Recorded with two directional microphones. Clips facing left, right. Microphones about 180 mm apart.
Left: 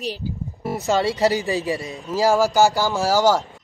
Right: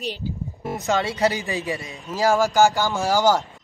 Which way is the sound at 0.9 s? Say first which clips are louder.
Left 3 dB; 40° left (ahead or behind).